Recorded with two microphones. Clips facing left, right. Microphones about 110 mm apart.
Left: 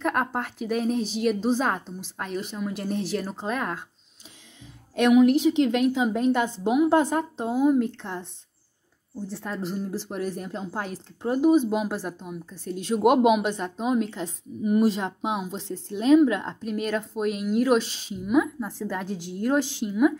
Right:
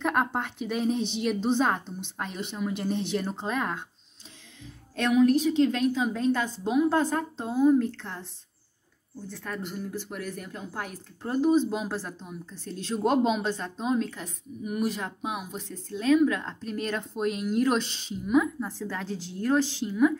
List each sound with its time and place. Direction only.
0.0 s a woman's voice: centre (ahead or behind)
4.9 s a woman's voice: 15° left (ahead or behind)
9.6 s speech: 35° left (ahead or behind)
11.2 s a woman's voice: 10° left (ahead or behind)
16.6 s a woman's voice: 10° left (ahead or behind)